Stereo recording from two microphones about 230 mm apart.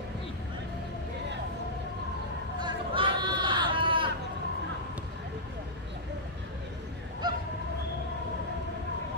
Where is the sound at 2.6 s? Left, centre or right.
Right.